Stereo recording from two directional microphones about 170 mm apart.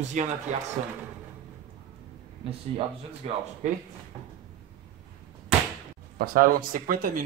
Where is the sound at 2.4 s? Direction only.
35° right (ahead or behind).